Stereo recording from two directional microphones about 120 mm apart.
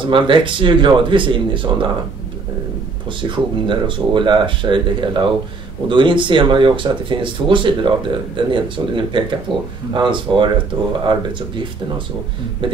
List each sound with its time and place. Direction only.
0.0 s speech: 45° right (ahead or behind)
3.2 s speech: 45° right (ahead or behind)
12.6 s speech: 45° right (ahead or behind)